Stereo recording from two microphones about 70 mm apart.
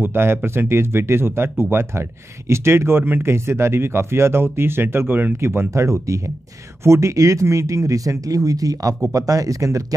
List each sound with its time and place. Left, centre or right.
0.0 s speech: right
5.7 s speech: right